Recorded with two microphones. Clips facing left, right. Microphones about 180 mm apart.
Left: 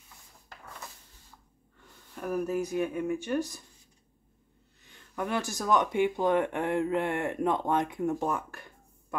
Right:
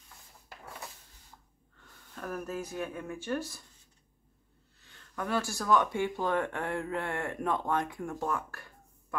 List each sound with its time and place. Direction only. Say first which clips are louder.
2.1 s speech: left 7 dB; 15° left (ahead or behind)
4.8 s speech: left 2 dB; 15° left (ahead or behind)